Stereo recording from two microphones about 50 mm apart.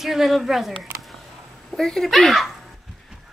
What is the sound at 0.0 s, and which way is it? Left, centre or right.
Speech, centre.